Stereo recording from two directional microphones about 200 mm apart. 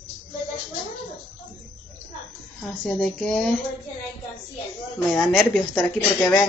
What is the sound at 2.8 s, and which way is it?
Speech, centre (ahead or behind).